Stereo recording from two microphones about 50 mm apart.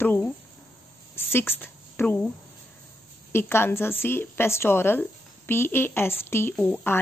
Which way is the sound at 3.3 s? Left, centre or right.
Left.